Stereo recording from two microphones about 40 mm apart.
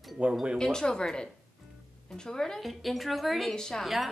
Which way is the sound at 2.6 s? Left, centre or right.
Centre.